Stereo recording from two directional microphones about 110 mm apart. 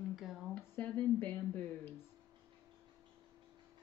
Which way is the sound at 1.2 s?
15° left (ahead or behind).